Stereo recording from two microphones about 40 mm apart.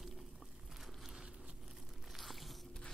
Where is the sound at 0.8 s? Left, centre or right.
Centre.